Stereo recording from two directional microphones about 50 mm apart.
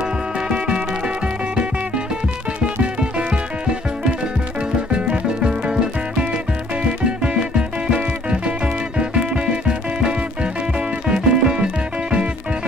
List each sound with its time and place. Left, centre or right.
0.5 s music: centre
2.8 s music: centre
4.9 s music: centre